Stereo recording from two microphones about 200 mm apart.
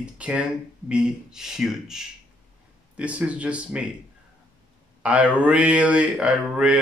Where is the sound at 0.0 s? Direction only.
5° right (ahead or behind).